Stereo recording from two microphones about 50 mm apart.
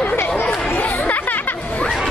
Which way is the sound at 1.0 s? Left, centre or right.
Left.